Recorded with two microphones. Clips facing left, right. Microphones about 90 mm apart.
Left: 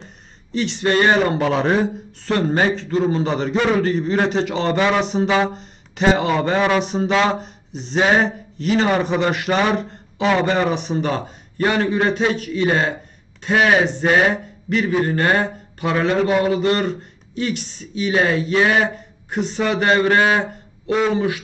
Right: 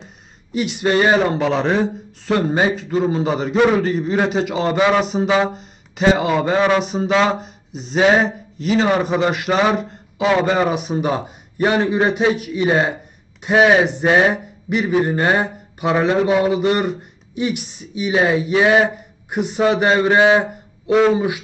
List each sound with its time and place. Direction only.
0.0 s speech: 10° right (ahead or behind)